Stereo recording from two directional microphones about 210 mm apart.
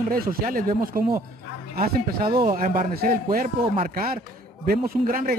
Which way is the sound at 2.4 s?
40° right (ahead or behind).